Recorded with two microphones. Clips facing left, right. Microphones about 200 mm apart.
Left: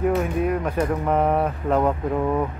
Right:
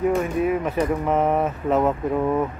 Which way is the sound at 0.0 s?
Centre (ahead or behind).